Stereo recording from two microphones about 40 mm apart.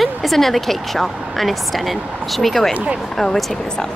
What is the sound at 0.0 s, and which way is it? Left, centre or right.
Speech, centre.